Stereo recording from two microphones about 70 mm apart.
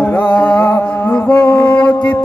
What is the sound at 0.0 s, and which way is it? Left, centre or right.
Music, left.